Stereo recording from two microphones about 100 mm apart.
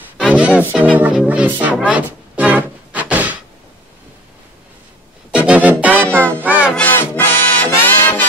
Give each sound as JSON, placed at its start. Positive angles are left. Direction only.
{"t": 0.3, "sound": "music", "side_deg": -15}
{"t": 1.7, "sound": "a sound", "side_deg": -15}
{"t": 5.3, "sound": "music", "side_deg": -10}
{"t": 6.0, "sound": "music", "side_deg": 15}
{"t": 6.4, "sound": "music", "side_deg": -15}
{"t": 6.9, "sound": "music", "side_deg": 20}